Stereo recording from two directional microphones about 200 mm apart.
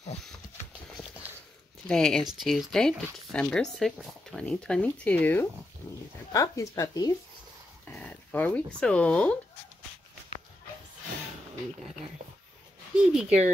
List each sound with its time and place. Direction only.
1.9 s speech: 5° left (ahead or behind); by 7.2 s 20° left (ahead or behind)
7.8 s speech: 5° left (ahead or behind)
12.9 s speech: 5° right (ahead or behind)